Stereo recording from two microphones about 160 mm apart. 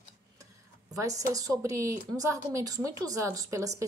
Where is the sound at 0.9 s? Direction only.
20° right (ahead or behind).